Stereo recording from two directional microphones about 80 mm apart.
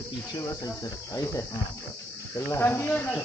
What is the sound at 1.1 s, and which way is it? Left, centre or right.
Speech, left.